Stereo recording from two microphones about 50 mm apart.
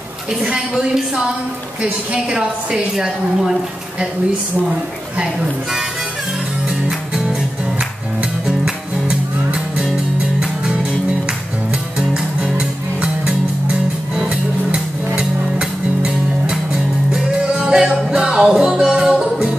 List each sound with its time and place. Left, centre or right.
0.4 s a woman's voice: centre
2.3 s a woman's voice: centre
5.1 s a woman's voice: centre
6.9 s music: centre
8.5 s music: centre
12.1 s music: centre